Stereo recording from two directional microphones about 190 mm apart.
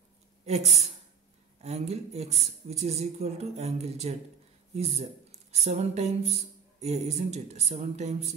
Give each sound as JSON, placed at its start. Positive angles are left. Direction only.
{"t": 0.5, "sound": "speech", "side_deg": -35}
{"t": 5.5, "sound": "speech", "side_deg": -35}